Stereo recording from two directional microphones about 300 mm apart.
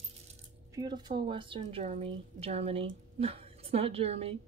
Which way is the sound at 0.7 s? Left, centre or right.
Centre.